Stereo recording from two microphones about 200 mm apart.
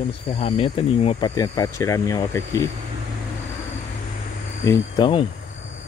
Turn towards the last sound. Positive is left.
turn(degrees=25)  # may be behind; listen again after turning